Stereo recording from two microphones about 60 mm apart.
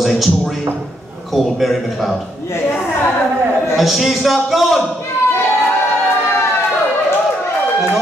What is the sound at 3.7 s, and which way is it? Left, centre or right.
A man's voice, centre.